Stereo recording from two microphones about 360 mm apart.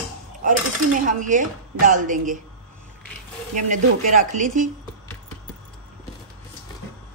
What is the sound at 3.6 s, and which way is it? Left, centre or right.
A woman's voice, right.